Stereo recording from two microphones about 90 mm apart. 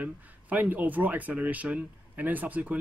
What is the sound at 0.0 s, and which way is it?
Speech, 20° right (ahead or behind).